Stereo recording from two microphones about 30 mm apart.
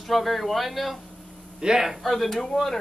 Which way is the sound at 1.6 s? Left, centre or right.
Right.